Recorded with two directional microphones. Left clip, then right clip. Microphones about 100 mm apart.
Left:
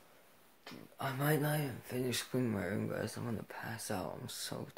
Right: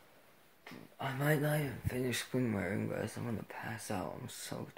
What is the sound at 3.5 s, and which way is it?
Speech, 30° left (ahead or behind).